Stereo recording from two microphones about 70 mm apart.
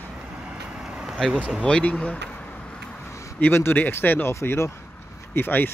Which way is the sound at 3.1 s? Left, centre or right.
Left.